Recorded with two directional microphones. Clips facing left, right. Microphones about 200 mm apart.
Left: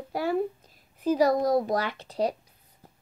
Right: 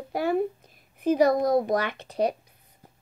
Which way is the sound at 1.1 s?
55° right (ahead or behind).